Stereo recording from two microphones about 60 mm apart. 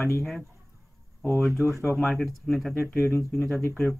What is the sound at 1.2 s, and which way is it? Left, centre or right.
Speech, left.